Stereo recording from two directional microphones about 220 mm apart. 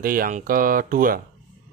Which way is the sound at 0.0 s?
40° right (ahead or behind).